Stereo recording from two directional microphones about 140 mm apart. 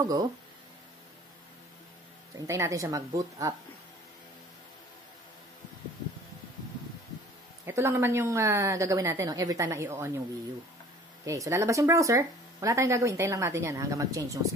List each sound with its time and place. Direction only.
0.0 s speech: 25° right (ahead or behind)
2.3 s speech: 20° right (ahead or behind)
7.6 s speech: 20° right (ahead or behind)
11.2 s speech: 20° right (ahead or behind)